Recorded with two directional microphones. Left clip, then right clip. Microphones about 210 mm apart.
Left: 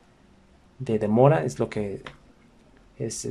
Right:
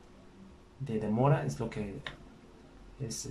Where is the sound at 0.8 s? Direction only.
45° left (ahead or behind).